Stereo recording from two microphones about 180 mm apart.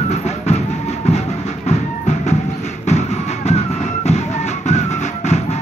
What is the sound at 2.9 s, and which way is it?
Music, 40° left (ahead or behind).